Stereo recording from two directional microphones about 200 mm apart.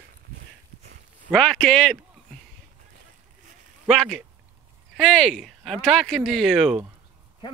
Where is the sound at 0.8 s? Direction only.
40° right (ahead or behind).